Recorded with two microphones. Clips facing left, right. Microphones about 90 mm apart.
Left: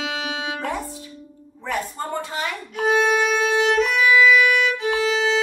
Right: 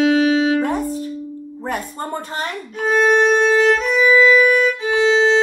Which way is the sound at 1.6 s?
50° right (ahead or behind).